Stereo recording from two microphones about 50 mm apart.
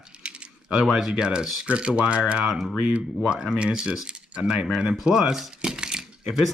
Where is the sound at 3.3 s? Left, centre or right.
Centre.